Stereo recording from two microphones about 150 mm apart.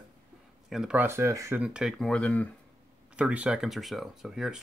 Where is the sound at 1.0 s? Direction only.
20° right (ahead or behind).